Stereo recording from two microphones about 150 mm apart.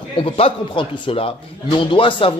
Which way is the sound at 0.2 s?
35° left (ahead or behind).